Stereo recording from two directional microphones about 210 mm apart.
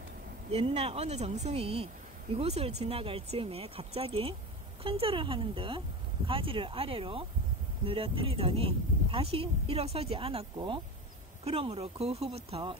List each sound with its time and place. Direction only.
0.5 s speech: 30° right (ahead or behind)